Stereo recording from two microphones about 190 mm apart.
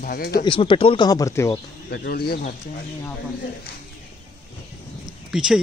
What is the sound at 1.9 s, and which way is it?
Speech, 60° left (ahead or behind).